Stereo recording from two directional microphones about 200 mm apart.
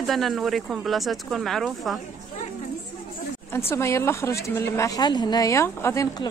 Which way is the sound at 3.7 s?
15° left (ahead or behind).